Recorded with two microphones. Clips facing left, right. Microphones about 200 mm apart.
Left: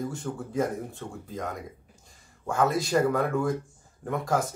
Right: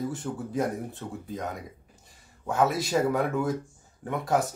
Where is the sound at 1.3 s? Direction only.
Centre (ahead or behind).